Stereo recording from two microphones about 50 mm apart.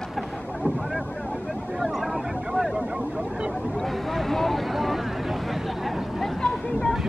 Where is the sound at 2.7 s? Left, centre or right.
Centre.